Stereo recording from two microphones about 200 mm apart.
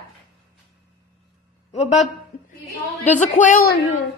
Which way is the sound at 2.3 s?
45° left (ahead or behind).